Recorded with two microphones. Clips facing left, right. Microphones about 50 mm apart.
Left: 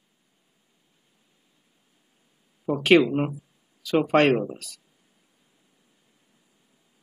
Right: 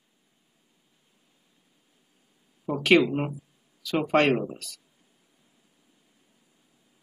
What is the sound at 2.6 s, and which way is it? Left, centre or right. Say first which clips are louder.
Speech: left 2 dB; centre.